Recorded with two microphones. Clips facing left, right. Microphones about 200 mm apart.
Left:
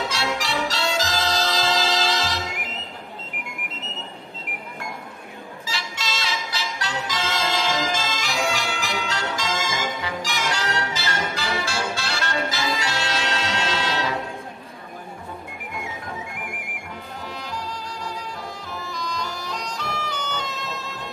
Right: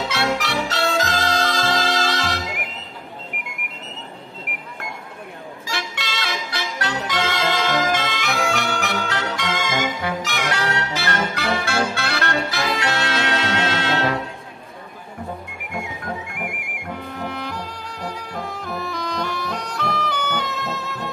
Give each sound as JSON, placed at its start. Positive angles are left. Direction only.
{"t": 0.1, "sound": "music", "side_deg": -60}
{"t": 5.7, "sound": "music", "side_deg": -55}
{"t": 17.2, "sound": "music", "side_deg": -60}